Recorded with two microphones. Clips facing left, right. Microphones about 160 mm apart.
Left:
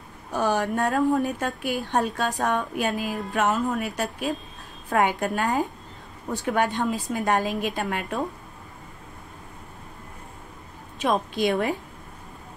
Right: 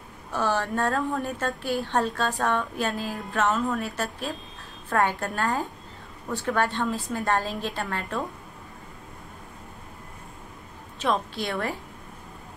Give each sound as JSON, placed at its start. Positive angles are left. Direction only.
{"t": 0.3, "sound": "a woman's voice", "side_deg": 15}
{"t": 11.0, "sound": "a woman's voice", "side_deg": 15}